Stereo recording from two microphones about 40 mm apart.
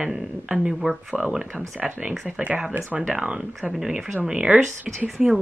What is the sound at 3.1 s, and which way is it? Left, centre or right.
Speech, right.